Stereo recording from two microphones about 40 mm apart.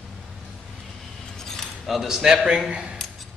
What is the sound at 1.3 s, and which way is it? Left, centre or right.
Cutlery, centre.